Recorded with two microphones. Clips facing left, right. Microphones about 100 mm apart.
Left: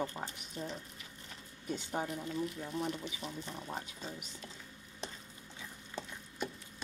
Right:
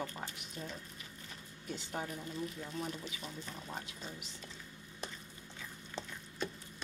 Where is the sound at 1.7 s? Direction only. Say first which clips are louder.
Left 3 dB; 15° left (ahead or behind).